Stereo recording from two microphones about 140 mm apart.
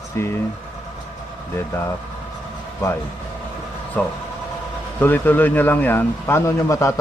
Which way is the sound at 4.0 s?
10° left (ahead or behind).